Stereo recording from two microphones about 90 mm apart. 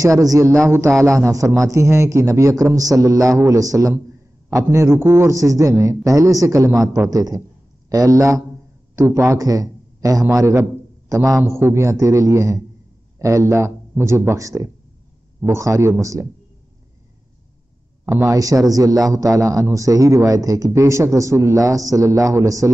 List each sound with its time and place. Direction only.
0.0 s a man's voice: 40° right (ahead or behind)
4.6 s a man's voice: 30° right (ahead or behind)
18.1 s a man's voice: 35° right (ahead or behind)